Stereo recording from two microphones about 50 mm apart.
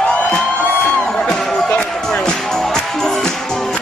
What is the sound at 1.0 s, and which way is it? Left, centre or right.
Music, centre.